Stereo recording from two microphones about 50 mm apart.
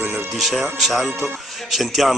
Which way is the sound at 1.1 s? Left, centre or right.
Right.